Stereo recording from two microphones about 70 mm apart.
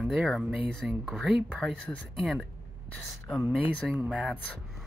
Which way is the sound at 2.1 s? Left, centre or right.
Centre.